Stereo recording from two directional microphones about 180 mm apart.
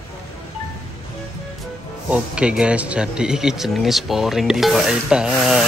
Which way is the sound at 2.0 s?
5° right (ahead or behind).